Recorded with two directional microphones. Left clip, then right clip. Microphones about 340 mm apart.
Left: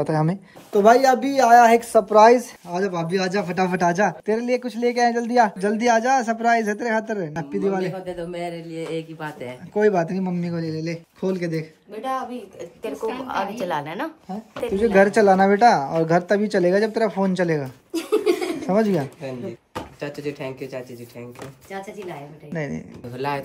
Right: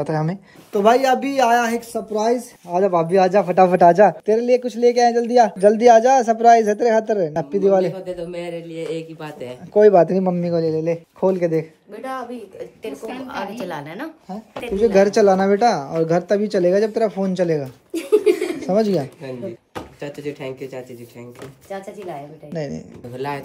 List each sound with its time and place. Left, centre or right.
0.0 s speech: centre
2.0 s speech: left
3.1 s a woman's voice: centre
9.8 s a woman's voice: centre
13.0 s a woman's voice: centre
22.5 s speech: centre